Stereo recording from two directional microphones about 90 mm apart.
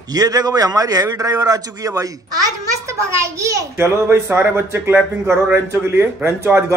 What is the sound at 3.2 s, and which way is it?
A child's voice, 35° right (ahead or behind).